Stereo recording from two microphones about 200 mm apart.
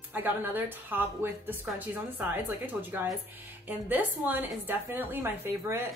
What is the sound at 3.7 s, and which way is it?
A woman's voice, 10° right (ahead or behind).